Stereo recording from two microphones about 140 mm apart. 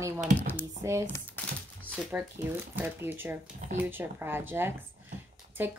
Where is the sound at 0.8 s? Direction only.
20° right (ahead or behind).